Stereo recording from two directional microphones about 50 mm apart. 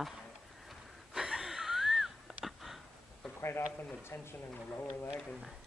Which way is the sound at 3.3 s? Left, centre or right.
Left.